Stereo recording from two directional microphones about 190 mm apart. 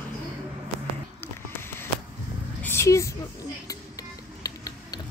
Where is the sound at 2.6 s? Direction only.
15° left (ahead or behind).